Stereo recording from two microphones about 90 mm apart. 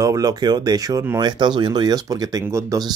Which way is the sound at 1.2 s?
55° right (ahead or behind).